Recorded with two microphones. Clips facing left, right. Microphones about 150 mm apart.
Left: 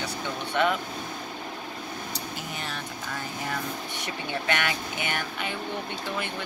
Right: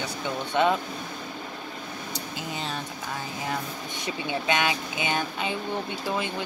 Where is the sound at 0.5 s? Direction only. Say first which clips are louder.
Right 2 dB; 20° right (ahead or behind).